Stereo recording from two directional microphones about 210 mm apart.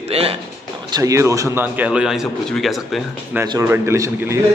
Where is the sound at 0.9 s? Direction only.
15° right (ahead or behind); by 3.4 s centre (ahead or behind).